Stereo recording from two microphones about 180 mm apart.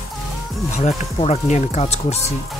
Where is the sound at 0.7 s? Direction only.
40° left (ahead or behind).